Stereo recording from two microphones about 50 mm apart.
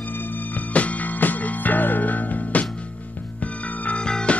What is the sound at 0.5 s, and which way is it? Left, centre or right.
Music, left.